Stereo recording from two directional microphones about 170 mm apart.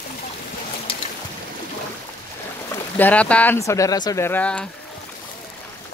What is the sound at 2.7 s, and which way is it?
Speech, 10° left (ahead or behind).